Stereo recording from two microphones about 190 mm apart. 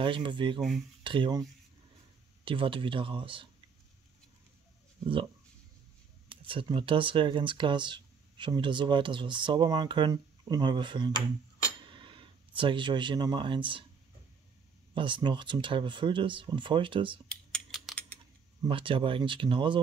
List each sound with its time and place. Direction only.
0.0 s speech: 25° right (ahead or behind)
0.6 s speech: centre (ahead or behind)
1.0 s speech: 25° right (ahead or behind)
2.4 s speech: 25° right (ahead or behind)
6.2 s speech: 25° right (ahead or behind)
15.0 s speech: 25° right (ahead or behind)
17.3 s a sound: centre (ahead or behind)
18.6 s speech: 25° right (ahead or behind)